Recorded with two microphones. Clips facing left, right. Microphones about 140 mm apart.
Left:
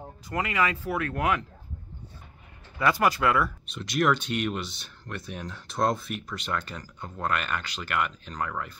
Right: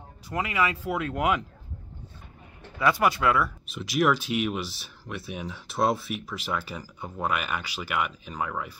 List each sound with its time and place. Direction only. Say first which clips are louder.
0.3 s speech: even; centre (ahead or behind)
0.8 s speech: right 1 dB; 15° right (ahead or behind)
2.8 s speech: even; centre (ahead or behind)